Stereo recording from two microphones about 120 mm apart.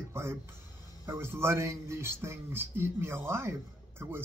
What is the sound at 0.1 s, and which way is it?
Speech, 20° right (ahead or behind).